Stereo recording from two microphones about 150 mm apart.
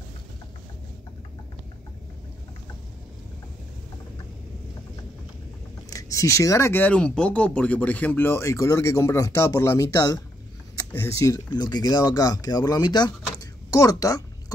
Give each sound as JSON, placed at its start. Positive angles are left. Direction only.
{"t": 5.9, "sound": "speech", "side_deg": 25}